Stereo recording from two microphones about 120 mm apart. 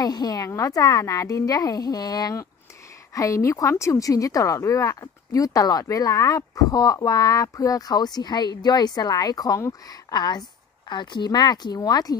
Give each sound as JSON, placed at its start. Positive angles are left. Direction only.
{"t": 0.0, "sound": "a woman's voice", "side_deg": 35}